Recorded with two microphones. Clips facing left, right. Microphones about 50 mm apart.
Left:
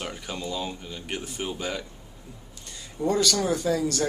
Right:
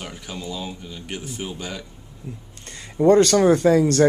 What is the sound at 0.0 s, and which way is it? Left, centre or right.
Speech, centre.